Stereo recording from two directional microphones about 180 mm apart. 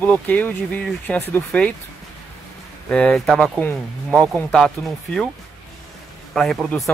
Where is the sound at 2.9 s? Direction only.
5° left (ahead or behind).